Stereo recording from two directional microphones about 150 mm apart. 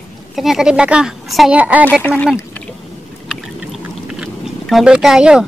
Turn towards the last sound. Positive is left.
turn(degrees=-5)  # may be behind; listen again after turning